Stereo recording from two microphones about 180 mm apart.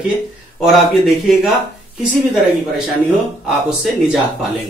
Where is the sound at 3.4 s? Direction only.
Centre (ahead or behind).